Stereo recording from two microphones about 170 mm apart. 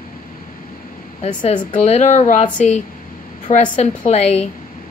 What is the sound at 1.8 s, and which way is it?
A woman's voice, 40° left (ahead or behind).